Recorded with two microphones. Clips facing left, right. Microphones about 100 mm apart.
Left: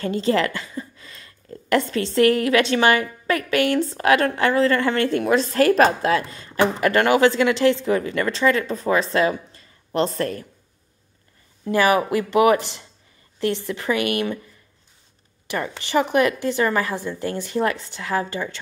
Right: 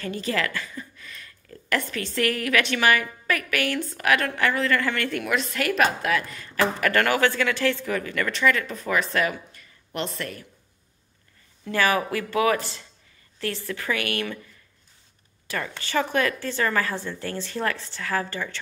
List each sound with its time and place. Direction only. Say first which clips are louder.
0.0 s a woman's voice: left 7 dB; 30° left (ahead or behind)
11.7 s a woman's voice: left 5 dB; 20° left (ahead or behind)
15.4 s a woman's voice: left 4 dB; 20° left (ahead or behind)